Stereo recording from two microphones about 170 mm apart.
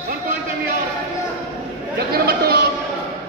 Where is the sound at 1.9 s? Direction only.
65° right (ahead or behind).